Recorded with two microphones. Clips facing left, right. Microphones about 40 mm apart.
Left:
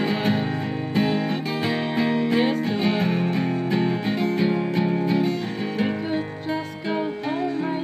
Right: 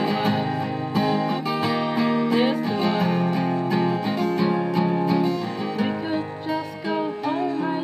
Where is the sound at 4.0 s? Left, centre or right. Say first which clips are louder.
Even; left.